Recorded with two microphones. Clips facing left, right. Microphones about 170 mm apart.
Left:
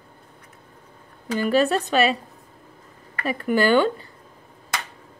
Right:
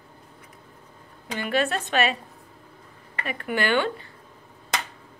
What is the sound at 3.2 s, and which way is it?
Speech, 40° left (ahead or behind).